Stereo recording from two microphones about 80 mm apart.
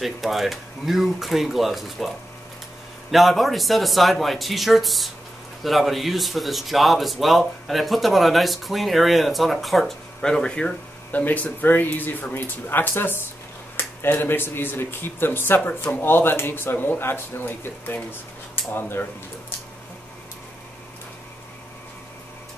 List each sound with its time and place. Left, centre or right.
0.0 s speech: centre; by 19.0 s left